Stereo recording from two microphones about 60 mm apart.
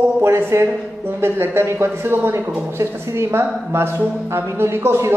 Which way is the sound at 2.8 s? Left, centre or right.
Right.